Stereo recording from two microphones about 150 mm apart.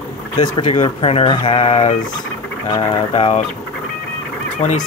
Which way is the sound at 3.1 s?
45° left (ahead or behind).